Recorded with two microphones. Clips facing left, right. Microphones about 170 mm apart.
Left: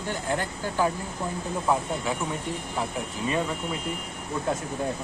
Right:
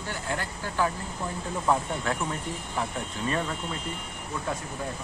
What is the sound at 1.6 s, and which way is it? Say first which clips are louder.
Speech: even; 5° left (ahead or behind).